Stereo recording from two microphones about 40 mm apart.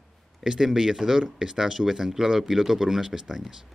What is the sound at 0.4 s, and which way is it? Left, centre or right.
Speech, centre.